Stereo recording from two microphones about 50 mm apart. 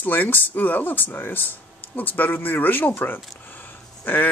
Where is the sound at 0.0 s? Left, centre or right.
Left.